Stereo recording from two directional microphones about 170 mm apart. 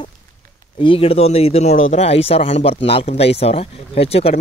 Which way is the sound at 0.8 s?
30° left (ahead or behind).